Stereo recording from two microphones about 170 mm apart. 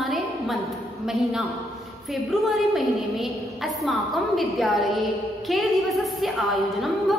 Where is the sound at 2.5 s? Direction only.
Centre (ahead or behind).